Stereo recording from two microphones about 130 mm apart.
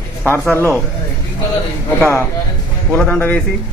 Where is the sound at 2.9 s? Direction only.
10° left (ahead or behind).